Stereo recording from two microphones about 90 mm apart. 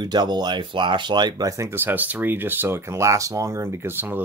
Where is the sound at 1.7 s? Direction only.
25° right (ahead or behind).